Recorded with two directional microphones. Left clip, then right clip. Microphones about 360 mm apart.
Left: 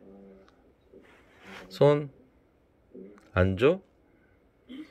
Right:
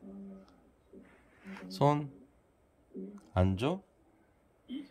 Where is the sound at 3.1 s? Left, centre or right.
Centre.